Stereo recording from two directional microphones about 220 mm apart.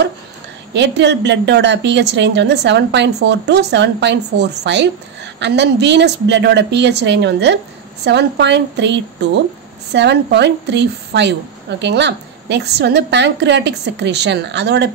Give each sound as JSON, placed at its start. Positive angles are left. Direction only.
{"t": 0.7, "sound": "a woman's voice", "side_deg": -50}